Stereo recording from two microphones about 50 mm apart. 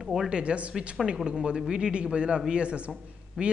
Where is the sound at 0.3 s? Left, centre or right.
Right.